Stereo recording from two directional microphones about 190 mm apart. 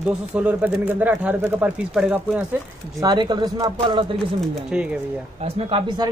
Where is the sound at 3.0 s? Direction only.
20° right (ahead or behind).